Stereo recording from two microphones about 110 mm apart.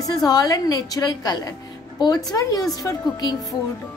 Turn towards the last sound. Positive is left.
turn(degrees=35)  # may be behind; listen again after turning